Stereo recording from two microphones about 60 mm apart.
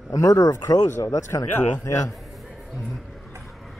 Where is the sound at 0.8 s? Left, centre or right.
Left.